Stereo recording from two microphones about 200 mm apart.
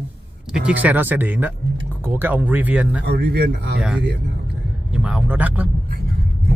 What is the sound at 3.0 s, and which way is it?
Speech, 55° right (ahead or behind).